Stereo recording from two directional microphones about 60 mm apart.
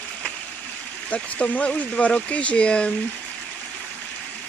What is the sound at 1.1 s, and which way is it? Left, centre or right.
Speech, left.